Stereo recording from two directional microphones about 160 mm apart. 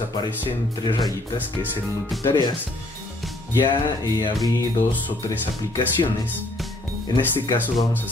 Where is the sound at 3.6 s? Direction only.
25° left (ahead or behind).